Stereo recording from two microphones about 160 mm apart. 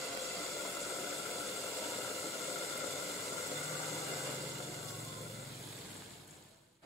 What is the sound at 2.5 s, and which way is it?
White noise, centre (ahead or behind).